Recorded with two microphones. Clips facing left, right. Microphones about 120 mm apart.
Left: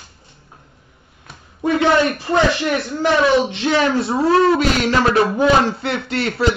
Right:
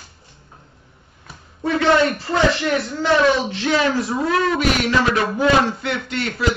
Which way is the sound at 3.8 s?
30° left (ahead or behind).